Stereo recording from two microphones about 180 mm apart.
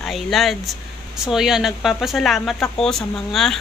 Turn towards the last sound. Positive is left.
turn(degrees=0)  # may be behind; listen again after turning